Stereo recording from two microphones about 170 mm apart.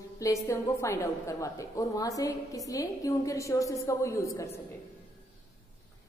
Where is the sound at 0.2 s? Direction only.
15° left (ahead or behind).